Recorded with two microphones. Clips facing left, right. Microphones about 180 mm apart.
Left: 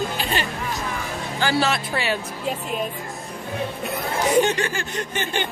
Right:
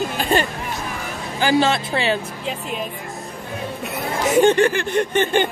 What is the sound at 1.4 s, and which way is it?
Speech, 25° right (ahead or behind).